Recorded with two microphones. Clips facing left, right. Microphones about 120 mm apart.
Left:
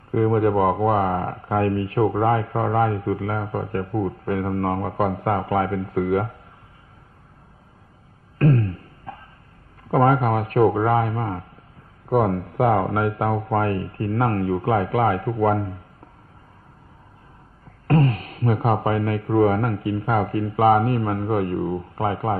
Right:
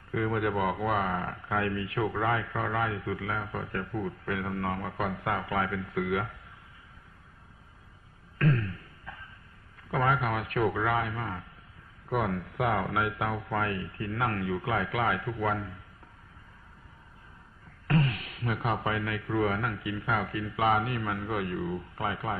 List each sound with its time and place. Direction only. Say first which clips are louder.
0.1 s speech: left 10 dB; 35° left (ahead or behind)
8.4 s beatboxing: left 8 dB; 40° left (ahead or behind)
9.8 s speech: left 10 dB; 40° left (ahead or behind)
17.8 s speech: left 8 dB; 40° left (ahead or behind)